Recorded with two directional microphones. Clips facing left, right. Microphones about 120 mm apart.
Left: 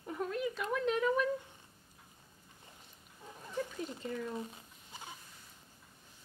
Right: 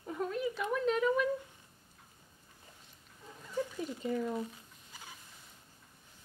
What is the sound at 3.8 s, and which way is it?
Speech, 15° right (ahead or behind).